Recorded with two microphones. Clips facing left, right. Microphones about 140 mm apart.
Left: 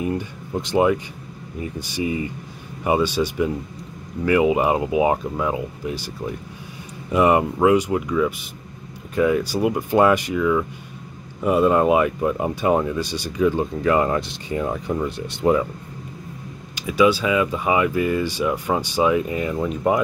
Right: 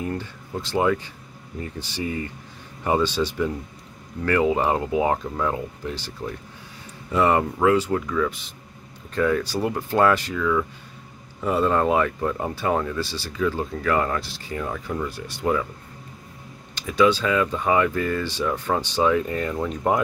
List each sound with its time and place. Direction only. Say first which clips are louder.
0.0 s speech: left 4 dB; 15° left (ahead or behind)
16.7 s speech: left 2 dB; 10° left (ahead or behind)